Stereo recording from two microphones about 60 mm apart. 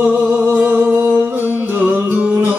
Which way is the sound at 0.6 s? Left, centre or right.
Right.